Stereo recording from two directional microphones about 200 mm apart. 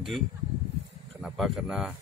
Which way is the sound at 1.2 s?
Centre (ahead or behind).